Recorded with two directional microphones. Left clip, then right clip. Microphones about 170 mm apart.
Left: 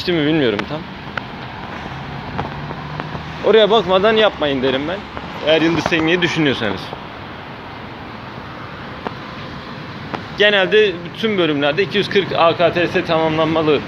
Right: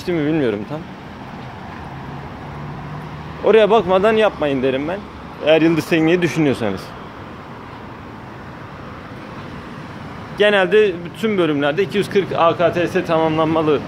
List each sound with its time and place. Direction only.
0.0 s speech: 5° right (ahead or behind)
3.4 s speech: 15° right (ahead or behind)
5.4 s speech: 25° right (ahead or behind)
10.3 s speech: 25° right (ahead or behind)